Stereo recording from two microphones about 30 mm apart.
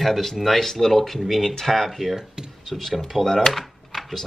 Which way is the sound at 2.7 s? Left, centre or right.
Centre.